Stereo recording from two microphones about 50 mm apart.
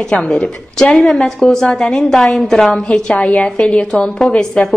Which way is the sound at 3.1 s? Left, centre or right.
Left.